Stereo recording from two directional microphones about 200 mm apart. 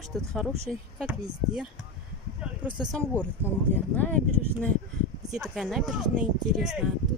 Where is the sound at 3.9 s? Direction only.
10° left (ahead or behind).